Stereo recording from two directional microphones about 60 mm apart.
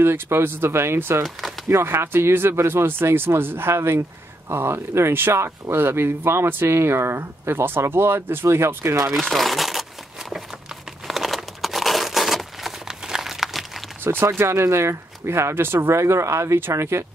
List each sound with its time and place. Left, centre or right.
0.0 s speech: right
9.1 s speech: centre
11.1 s crumpling: centre
14.0 s speech: right